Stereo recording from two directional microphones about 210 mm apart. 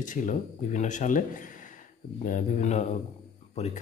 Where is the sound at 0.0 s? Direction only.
35° left (ahead or behind).